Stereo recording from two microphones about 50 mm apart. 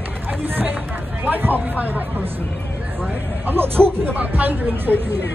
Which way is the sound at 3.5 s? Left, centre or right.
Right.